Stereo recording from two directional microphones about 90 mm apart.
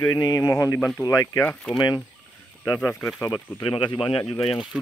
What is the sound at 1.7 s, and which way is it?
Speech, 55° left (ahead or behind).